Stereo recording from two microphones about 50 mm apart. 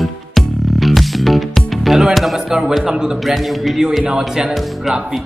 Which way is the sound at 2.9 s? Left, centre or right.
Centre.